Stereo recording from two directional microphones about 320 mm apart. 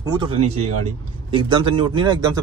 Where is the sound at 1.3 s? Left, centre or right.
Centre.